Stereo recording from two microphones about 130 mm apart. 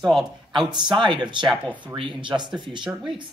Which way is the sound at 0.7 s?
35° right (ahead or behind).